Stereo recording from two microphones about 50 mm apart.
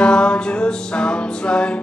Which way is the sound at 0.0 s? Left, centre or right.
Centre.